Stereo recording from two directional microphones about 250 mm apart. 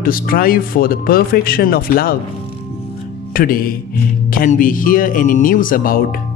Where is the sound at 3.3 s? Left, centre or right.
Left.